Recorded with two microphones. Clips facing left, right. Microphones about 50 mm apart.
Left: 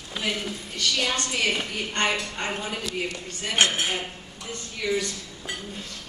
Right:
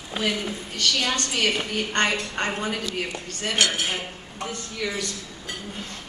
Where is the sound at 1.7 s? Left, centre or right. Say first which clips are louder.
Right 3 dB; right.